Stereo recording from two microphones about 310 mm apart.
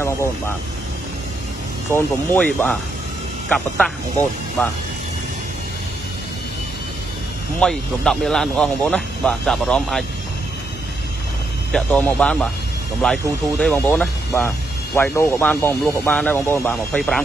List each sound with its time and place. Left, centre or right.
1.9 s speech: centre
7.6 s speech: centre
11.7 s speech: centre